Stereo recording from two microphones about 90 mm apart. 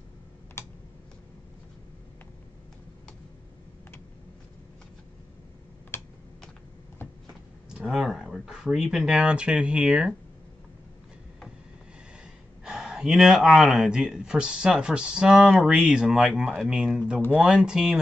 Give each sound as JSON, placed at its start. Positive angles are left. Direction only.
{"t": 0.6, "sound": "computer keyboard", "side_deg": 25}
{"t": 5.9, "sound": "typing", "side_deg": 25}
{"t": 7.7, "sound": "speech", "side_deg": -5}
{"t": 12.6, "sound": "speech", "side_deg": -5}